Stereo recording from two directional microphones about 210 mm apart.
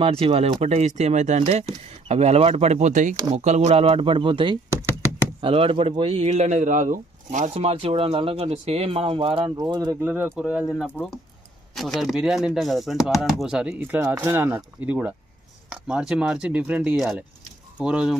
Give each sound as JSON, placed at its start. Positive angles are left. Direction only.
{"t": 0.0, "sound": "a man's voice", "side_deg": -25}